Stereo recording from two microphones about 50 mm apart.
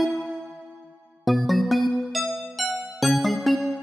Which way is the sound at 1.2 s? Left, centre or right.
Centre.